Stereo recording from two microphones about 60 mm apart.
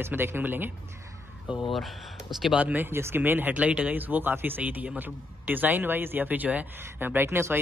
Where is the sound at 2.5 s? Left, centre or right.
Right.